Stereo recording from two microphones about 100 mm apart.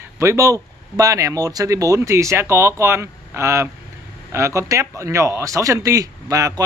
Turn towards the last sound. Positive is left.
turn(degrees=-35)  # may be behind; listen again after turning